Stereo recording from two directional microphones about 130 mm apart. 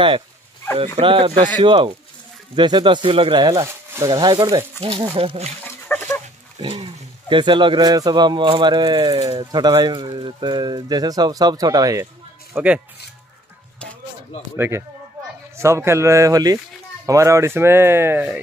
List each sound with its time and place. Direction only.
0.7 s speech: 45° right (ahead or behind)
3.6 s a sound: 20° right (ahead or behind)
4.1 s speech: 30° right (ahead or behind); by 5.5 s 50° right (ahead or behind)
5.6 s chicken: 15° left (ahead or behind)
6.6 s speech: 40° right (ahead or behind)
12.5 s speech: 10° right (ahead or behind)
15.5 s speech: 20° right (ahead or behind)